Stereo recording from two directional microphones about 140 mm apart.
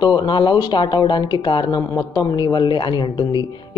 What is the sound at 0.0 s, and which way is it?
Speech, 30° left (ahead or behind).